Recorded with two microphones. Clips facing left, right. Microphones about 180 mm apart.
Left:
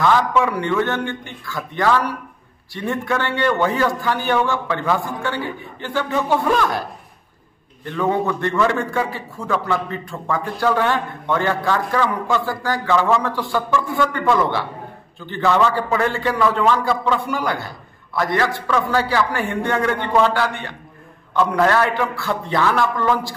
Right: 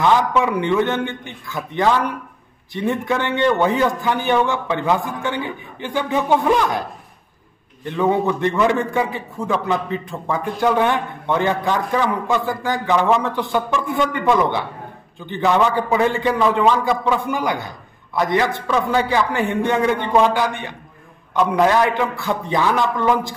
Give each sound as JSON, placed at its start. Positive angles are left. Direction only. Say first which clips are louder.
{"t": 0.0, "sound": "a man's voice", "louder": "even", "side_deg": -20}
{"t": 7.8, "sound": "a man's voice", "louder": "right 2 dB", "side_deg": -20}